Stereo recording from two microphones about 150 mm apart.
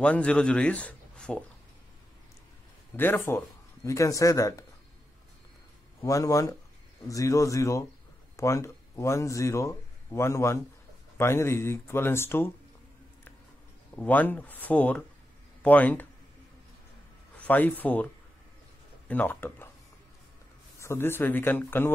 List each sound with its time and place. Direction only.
0.0 s speech: 10° left (ahead or behind)
3.0 s speech: 15° left (ahead or behind)
5.9 s speech: 20° left (ahead or behind)
13.9 s speech: 10° left (ahead or behind)
17.4 s speech: 10° left (ahead or behind)
20.8 s speech: 15° left (ahead or behind)